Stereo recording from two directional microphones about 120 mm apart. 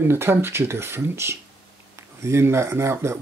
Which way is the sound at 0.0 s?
20° right (ahead or behind).